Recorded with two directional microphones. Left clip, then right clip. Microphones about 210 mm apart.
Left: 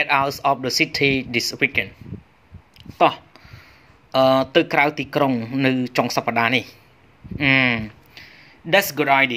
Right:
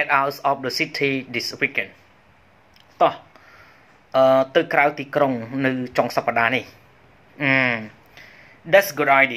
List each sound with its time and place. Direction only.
0.0 s speech: 30° left (ahead or behind)
3.0 s a sound: 45° left (ahead or behind)
4.1 s speech: 40° left (ahead or behind)